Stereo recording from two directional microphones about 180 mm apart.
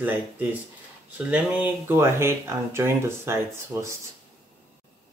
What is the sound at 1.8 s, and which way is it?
Speech, 15° right (ahead or behind).